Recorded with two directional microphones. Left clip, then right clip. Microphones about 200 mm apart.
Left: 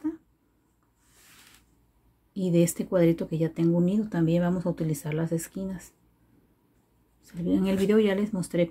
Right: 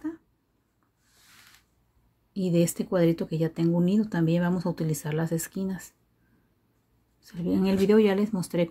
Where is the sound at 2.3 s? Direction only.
15° right (ahead or behind).